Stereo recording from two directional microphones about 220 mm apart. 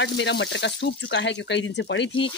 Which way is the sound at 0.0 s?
55° left (ahead or behind).